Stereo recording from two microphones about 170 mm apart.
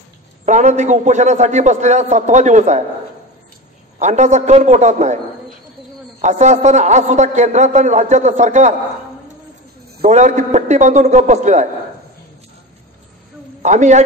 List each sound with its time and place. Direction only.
0.5 s a man's voice: 45° right (ahead or behind)
4.0 s a man's voice: 45° right (ahead or behind)
6.2 s a man's voice: 45° right (ahead or behind)
10.0 s a man's voice: 45° right (ahead or behind)
13.6 s a man's voice: 45° right (ahead or behind)